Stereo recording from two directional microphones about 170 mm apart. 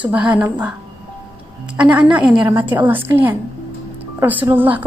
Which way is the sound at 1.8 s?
10° right (ahead or behind).